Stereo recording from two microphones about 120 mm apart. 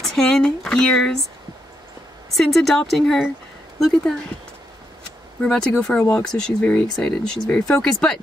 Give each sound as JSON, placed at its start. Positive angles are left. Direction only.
{"t": 0.0, "sound": "a sound", "side_deg": 5}
{"t": 2.3, "sound": "speech", "side_deg": 0}
{"t": 5.4, "sound": "speech", "side_deg": 5}